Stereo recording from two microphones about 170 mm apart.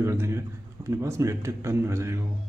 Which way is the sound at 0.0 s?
15° right (ahead or behind).